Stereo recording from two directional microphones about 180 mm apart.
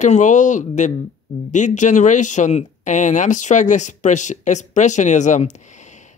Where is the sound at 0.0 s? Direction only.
40° left (ahead or behind).